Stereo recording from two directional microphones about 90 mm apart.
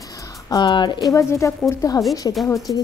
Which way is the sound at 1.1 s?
35° left (ahead or behind).